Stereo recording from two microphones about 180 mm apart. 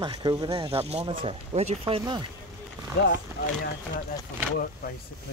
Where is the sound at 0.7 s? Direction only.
35° right (ahead or behind).